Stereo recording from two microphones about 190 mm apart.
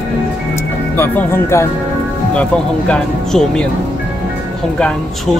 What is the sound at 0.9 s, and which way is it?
Speech, 10° left (ahead or behind).